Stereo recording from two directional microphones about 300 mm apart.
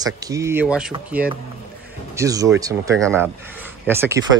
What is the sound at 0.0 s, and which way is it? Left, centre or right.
Speech, centre.